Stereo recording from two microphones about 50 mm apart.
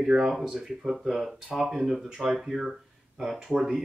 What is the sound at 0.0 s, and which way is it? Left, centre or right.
Speech, centre.